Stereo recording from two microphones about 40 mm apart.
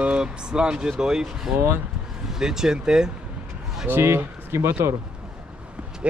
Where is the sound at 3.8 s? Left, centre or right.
Right.